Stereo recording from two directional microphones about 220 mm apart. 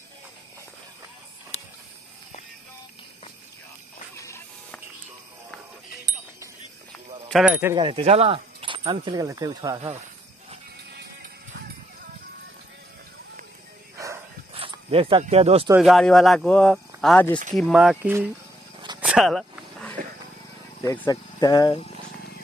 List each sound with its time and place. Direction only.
1.5 s mechanisms: 30° left (ahead or behind)
4.2 s a sound: 10° left (ahead or behind)
7.2 s speech: 5° right (ahead or behind)
7.7 s speech: 25° right (ahead or behind)
13.9 s dog: 15° right (ahead or behind)
14.5 s a sound: 25° right (ahead or behind)
15.2 s speech: 30° right (ahead or behind)
15.7 s speech: centre (ahead or behind)
18.9 s a sound: 5° right (ahead or behind)
20.8 s speech: 15° left (ahead or behind)